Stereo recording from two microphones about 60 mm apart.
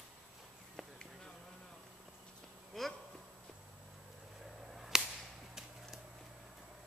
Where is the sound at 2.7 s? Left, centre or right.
Centre.